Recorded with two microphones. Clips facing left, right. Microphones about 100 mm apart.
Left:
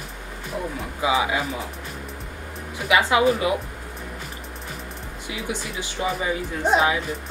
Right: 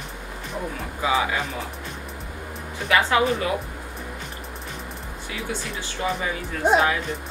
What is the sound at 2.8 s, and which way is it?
Speech, 10° left (ahead or behind).